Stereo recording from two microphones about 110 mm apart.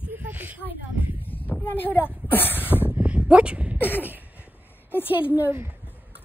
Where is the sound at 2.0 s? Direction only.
20° left (ahead or behind).